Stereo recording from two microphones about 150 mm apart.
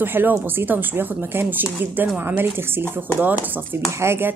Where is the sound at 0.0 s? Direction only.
15° right (ahead or behind).